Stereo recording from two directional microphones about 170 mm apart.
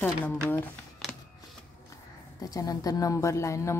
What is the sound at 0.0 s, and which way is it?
Speech, 10° left (ahead or behind).